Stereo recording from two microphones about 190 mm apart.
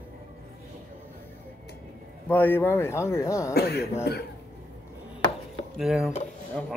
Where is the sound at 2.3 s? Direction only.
10° left (ahead or behind).